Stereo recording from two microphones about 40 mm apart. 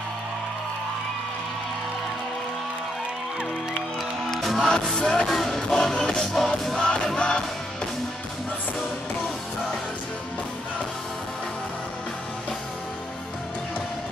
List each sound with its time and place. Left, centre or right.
4.3 s music: centre
4.9 s music: centre
6.8 s music: left